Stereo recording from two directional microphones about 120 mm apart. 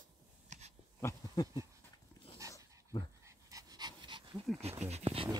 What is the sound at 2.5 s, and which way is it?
Dog, 35° left (ahead or behind).